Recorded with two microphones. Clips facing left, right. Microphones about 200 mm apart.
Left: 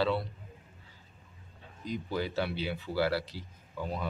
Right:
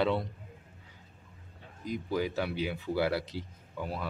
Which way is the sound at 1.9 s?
10° right (ahead or behind).